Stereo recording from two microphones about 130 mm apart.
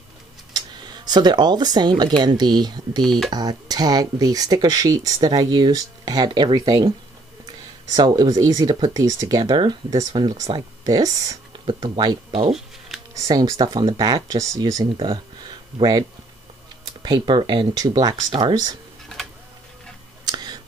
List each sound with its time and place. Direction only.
0.5 s speech: 30° right (ahead or behind)
7.9 s speech: 30° right (ahead or behind)
12.5 s a sound: centre (ahead or behind)
13.1 s speech: 30° right (ahead or behind)
18.3 s speech: 40° right (ahead or behind)